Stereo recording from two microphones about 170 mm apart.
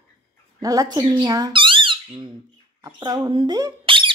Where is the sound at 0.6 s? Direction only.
20° right (ahead or behind).